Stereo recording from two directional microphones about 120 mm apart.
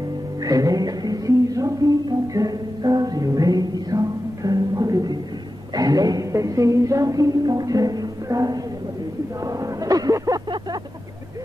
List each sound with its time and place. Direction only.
0.4 s music: 30° right (ahead or behind)
5.8 s speech: 30° right (ahead or behind)
9.4 s vehicle: 30° right (ahead or behind)